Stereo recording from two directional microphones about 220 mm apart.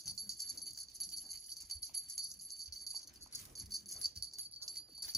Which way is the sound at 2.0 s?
Centre (ahead or behind).